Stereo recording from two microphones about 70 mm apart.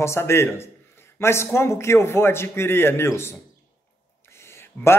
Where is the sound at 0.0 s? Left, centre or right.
Left.